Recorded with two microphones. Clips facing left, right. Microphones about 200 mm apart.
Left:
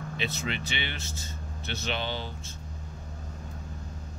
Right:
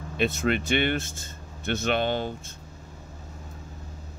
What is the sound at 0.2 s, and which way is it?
Speech, 50° right (ahead or behind).